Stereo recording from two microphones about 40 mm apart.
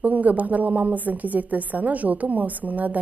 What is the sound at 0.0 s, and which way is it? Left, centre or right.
Speech, right.